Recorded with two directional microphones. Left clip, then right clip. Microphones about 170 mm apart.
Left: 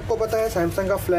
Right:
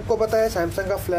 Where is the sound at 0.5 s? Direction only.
Centre (ahead or behind).